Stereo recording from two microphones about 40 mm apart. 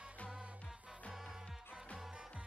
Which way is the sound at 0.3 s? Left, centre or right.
Right.